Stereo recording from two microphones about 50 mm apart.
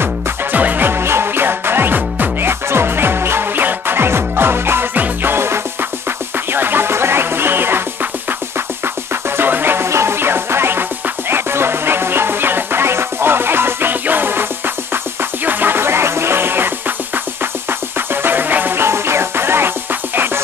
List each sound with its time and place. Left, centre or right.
0.0 s music: right
4.9 s music: right
5.3 s music: right
6.5 s music: right
8.8 s music: right
9.8 s music: right
15.4 s music: right